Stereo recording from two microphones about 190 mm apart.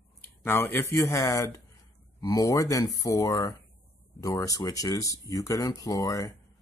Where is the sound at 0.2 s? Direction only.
10° left (ahead or behind).